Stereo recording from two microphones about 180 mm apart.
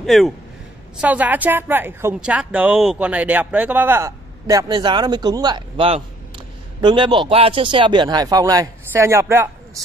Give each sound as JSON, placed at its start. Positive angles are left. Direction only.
{"t": 0.0, "sound": "a woman's voice", "side_deg": 0}